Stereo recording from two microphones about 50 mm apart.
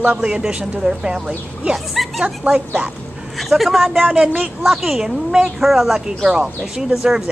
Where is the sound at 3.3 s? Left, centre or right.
Centre.